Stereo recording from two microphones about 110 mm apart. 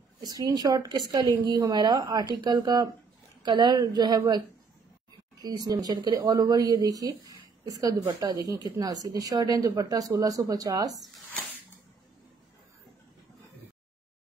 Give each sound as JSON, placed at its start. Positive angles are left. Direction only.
{"t": 0.2, "sound": "a woman's voice", "side_deg": -35}
{"t": 5.4, "sound": "a woman's voice", "side_deg": -35}
{"t": 8.2, "sound": "a woman's voice", "side_deg": -35}